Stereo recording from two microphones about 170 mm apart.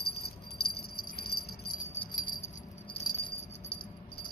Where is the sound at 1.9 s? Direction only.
35° left (ahead or behind).